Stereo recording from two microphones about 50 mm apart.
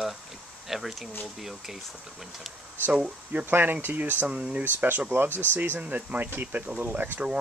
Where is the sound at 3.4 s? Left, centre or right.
Right.